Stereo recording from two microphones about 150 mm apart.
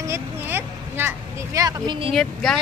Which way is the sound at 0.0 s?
15° right (ahead or behind).